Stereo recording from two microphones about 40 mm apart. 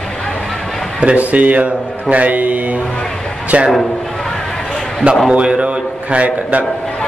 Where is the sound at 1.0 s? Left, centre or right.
Right.